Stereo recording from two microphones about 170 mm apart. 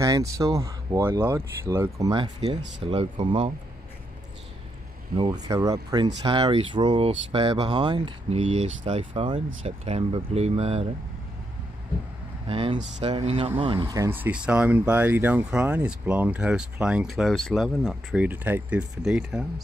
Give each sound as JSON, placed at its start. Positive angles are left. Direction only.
{"t": 0.0, "sound": "speech", "side_deg": -20}
{"t": 5.1, "sound": "speech", "side_deg": -25}
{"t": 12.4, "sound": "speech", "side_deg": -30}
{"t": 13.9, "sound": "speech", "side_deg": -15}